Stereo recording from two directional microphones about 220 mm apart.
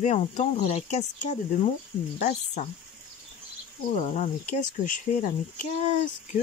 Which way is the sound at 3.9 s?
35° left (ahead or behind).